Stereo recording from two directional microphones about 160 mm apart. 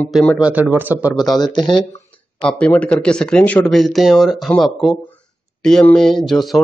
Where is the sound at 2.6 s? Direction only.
10° left (ahead or behind).